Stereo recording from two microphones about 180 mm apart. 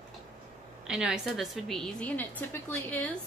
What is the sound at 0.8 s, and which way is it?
A woman's voice, 5° right (ahead or behind).